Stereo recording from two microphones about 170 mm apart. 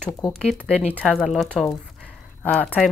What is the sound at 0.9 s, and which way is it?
Speech, 5° right (ahead or behind).